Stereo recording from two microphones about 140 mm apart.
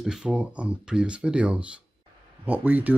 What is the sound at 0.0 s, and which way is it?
Speech, 5° right (ahead or behind).